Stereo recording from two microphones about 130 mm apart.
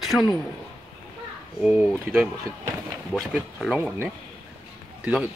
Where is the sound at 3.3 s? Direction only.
5° right (ahead or behind).